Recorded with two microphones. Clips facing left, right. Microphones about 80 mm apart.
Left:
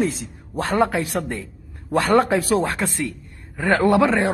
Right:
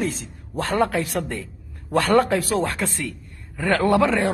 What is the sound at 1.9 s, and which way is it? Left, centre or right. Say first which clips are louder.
A man's voice: left 1 dB; centre.